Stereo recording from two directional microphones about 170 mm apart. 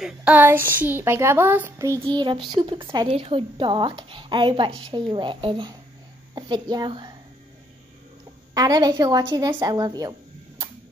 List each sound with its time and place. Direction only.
0.0 s a woman's voice: 5° right (ahead or behind); by 7.1 s 25° right (ahead or behind)
8.5 s speech: 20° right (ahead or behind)